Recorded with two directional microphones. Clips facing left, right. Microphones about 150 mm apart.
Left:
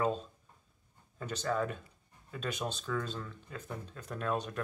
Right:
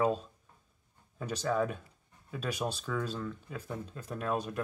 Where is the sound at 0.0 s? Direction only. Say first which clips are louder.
Right 3 dB; 10° right (ahead or behind).